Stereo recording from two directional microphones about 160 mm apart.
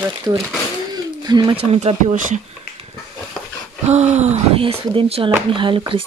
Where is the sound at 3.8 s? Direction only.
45° right (ahead or behind).